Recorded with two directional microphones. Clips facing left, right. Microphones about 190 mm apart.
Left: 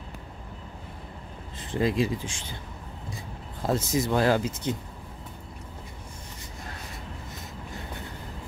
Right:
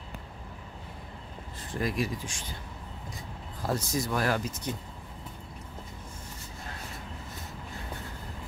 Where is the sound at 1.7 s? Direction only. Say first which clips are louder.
Left 6 dB; 25° left (ahead or behind).